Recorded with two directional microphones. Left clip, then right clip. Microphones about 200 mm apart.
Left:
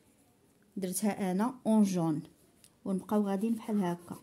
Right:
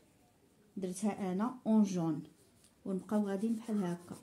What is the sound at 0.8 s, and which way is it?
Speech, 50° left (ahead or behind).